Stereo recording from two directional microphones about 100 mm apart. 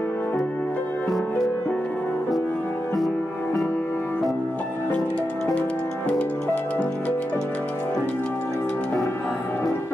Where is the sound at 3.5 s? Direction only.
10° left (ahead or behind).